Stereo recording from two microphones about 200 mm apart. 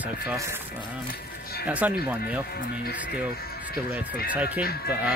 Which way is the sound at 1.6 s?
5° right (ahead or behind).